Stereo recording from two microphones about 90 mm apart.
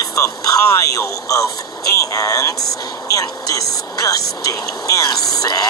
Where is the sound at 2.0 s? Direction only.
40° left (ahead or behind).